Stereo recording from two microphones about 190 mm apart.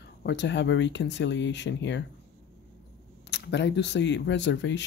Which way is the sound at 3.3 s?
65° left (ahead or behind).